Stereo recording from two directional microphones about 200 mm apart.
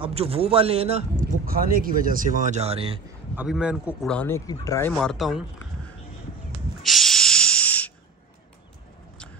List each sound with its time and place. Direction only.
0.0 s a man's voice: 30° right (ahead or behind)
1.6 s speech: 45° right (ahead or behind); by 3.0 s 30° right (ahead or behind)
3.3 s a man's voice: 5° right (ahead or behind); by 4.9 s 15° left (ahead or behind)
4.9 s a man's voice: centre (ahead or behind)
6.8 s a sound: centre (ahead or behind)